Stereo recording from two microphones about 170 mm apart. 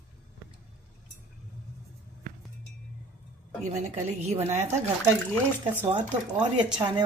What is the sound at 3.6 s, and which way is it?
Speech, 40° right (ahead or behind).